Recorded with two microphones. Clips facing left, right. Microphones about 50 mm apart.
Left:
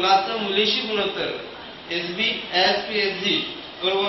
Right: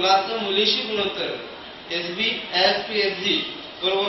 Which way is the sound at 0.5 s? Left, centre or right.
Left.